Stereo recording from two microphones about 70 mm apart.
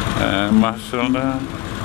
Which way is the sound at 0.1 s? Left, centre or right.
Left.